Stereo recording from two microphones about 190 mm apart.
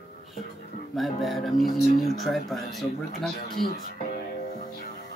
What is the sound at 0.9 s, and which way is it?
Speech, centre (ahead or behind).